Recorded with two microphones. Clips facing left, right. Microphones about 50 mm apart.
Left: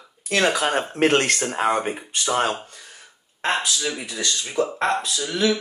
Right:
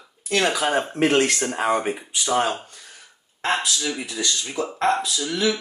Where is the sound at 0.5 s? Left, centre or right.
Left.